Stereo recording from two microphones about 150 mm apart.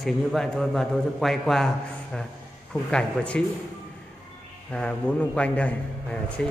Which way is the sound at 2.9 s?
5° left (ahead or behind).